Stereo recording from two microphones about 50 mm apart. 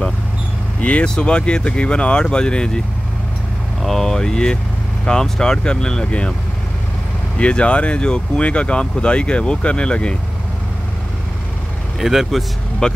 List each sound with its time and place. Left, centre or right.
0.7 s speech: left
3.8 s speech: centre
7.3 s speech: left
12.0 s speech: centre
12.8 s speech: centre